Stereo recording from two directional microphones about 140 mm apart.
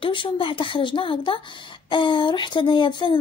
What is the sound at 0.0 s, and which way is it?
Speech, 40° left (ahead or behind).